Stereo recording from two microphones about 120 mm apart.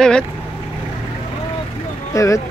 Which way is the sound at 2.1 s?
25° left (ahead or behind).